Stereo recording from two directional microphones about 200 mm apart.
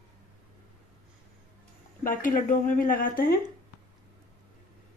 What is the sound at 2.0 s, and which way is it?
Speech, 40° left (ahead or behind).